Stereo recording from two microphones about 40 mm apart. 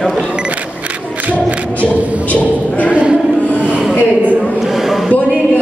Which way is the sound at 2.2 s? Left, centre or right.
Left.